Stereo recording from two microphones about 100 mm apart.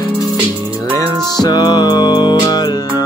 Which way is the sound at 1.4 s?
40° left (ahead or behind).